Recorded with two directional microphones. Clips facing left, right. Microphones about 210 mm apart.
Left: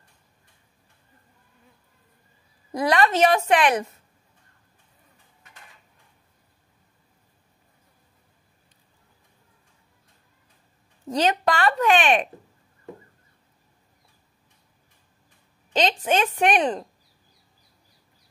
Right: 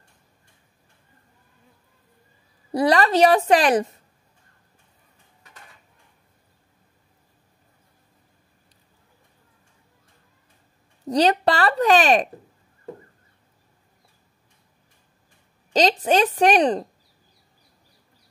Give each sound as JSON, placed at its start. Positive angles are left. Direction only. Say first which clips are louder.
{"t": 2.7, "sound": "a woman's voice", "louder": "right 3 dB", "side_deg": -35}
{"t": 11.1, "sound": "a woman's voice", "louder": "right 3 dB", "side_deg": -35}
{"t": 15.7, "sound": "a woman's voice", "louder": "right 4 dB", "side_deg": -40}